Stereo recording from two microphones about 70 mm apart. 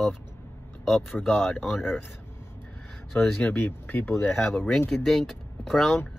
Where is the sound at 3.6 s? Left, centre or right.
Left.